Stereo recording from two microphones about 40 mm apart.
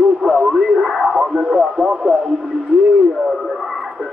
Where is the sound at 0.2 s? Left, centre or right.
Centre.